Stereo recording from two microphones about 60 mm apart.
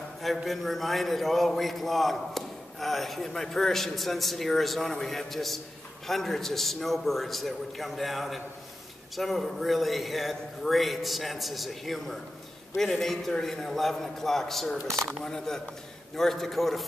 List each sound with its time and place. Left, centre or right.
0.5 s a man's voice: centre